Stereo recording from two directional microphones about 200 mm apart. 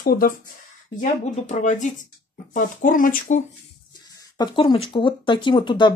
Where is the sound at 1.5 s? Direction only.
40° left (ahead or behind).